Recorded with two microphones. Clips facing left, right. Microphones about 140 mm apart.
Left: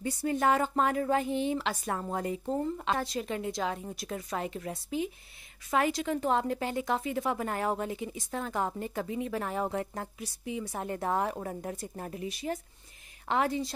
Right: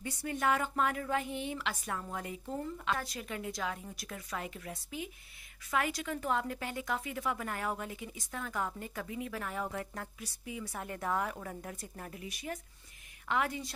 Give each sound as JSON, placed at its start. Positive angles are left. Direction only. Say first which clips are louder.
{"t": 0.0, "sound": "a woman's voice", "louder": "left 6 dB", "side_deg": 35}